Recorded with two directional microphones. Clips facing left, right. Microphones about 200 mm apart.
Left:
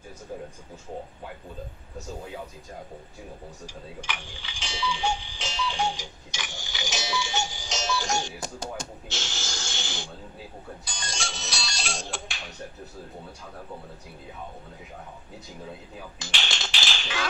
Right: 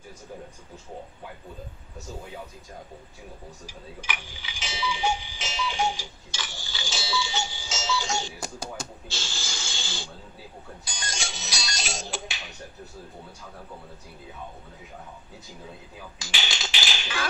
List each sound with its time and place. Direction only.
3.6 s speech: 5° right (ahead or behind)
5.9 s tick-tock: 15° left (ahead or behind)
9.1 s snake: 20° left (ahead or behind)
10.9 s ringtone: 5° right (ahead or behind)
16.3 s a sound: 5° right (ahead or behind)